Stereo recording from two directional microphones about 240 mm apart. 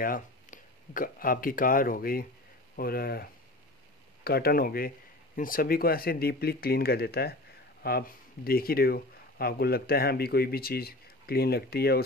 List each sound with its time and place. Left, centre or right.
0.0 s speech: left